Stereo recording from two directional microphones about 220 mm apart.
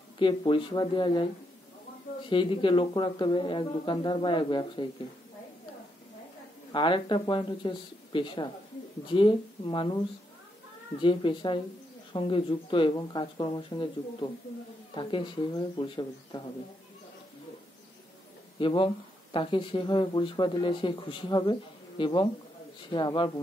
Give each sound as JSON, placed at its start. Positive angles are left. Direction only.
{"t": 0.2, "sound": "speech", "side_deg": 20}
{"t": 2.2, "sound": "speech", "side_deg": 20}
{"t": 6.7, "sound": "speech", "side_deg": 20}
{"t": 11.0, "sound": "speech", "side_deg": 20}
{"t": 18.6, "sound": "speech", "side_deg": 20}